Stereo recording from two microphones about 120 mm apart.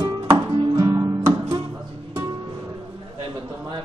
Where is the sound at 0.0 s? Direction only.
25° right (ahead or behind).